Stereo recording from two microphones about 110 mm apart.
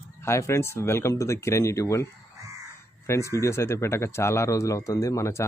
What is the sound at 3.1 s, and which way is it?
Speech, 25° left (ahead or behind).